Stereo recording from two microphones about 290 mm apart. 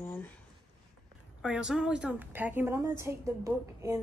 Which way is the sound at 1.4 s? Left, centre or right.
Centre.